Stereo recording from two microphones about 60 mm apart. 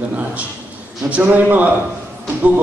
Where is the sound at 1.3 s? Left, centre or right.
Right.